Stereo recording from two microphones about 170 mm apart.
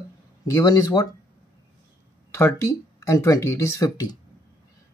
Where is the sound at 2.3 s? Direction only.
15° left (ahead or behind).